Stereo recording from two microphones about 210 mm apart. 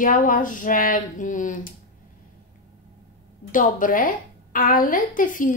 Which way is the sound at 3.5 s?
40° left (ahead or behind).